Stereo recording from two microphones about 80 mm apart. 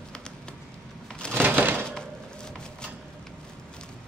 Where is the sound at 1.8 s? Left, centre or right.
Centre.